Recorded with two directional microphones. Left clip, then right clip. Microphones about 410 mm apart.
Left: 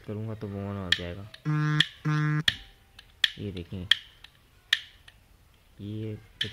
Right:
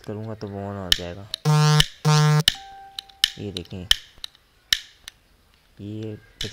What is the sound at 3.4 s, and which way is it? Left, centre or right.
Speech, centre.